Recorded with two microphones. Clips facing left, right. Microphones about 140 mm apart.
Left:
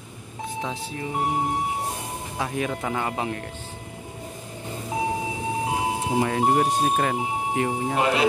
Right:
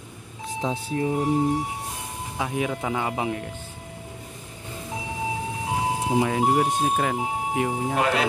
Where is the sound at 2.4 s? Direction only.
10° right (ahead or behind).